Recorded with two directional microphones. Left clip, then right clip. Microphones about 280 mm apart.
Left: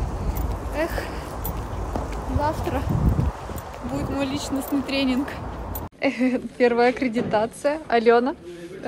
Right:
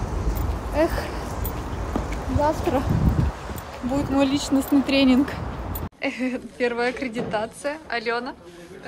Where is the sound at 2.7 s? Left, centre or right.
Centre.